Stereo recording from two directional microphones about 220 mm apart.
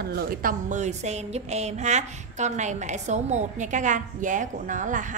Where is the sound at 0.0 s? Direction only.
45° right (ahead or behind).